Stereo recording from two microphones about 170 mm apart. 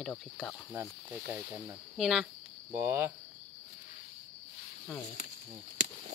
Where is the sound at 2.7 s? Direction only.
15° right (ahead or behind).